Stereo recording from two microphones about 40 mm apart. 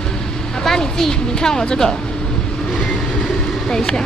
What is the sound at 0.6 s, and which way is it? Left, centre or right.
Speech, centre.